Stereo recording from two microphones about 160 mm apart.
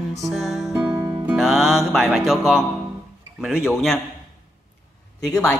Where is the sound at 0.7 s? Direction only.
20° right (ahead or behind).